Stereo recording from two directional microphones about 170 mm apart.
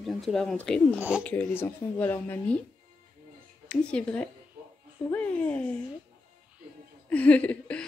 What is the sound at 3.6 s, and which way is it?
Speech, 5° left (ahead or behind).